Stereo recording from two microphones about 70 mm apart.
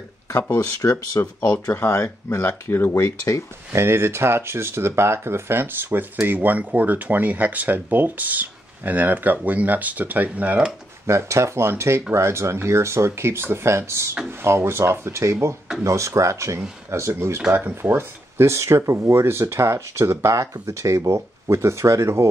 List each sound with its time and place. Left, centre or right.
0.5 s speech: left
1.2 s speech: left
1.5 s speech: left
1.9 s speech: left
3.7 s speech: right
11.1 s speech: right
17.5 s speech: right